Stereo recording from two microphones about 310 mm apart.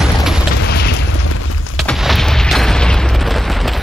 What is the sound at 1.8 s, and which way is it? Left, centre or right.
Boom, centre.